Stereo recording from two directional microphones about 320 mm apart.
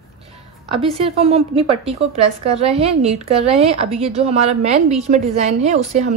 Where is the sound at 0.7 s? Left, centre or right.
Centre.